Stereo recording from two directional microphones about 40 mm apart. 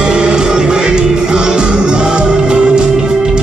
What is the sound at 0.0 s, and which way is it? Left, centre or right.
Music, right.